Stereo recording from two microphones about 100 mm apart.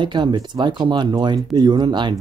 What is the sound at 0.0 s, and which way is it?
Speech, 50° right (ahead or behind).